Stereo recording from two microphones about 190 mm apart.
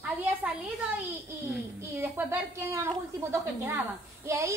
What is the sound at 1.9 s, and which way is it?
Speech, 15° right (ahead or behind).